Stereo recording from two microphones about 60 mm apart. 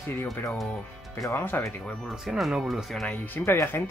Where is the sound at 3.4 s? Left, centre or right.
Left.